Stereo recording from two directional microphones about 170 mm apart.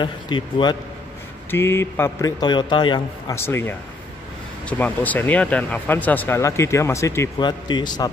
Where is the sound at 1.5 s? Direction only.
15° left (ahead or behind).